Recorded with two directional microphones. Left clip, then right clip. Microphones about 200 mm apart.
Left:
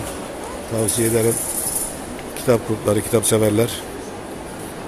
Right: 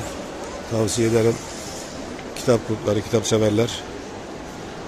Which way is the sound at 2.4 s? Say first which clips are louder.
Left 2 dB; 5° right (ahead or behind).